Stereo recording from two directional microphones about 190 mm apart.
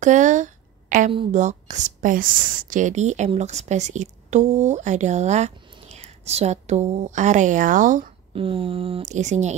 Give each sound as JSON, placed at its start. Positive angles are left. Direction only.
{"t": 0.0, "sound": "a sound", "side_deg": -40}
{"t": 1.1, "sound": "speech", "side_deg": -40}
{"t": 8.4, "sound": "speech", "side_deg": -30}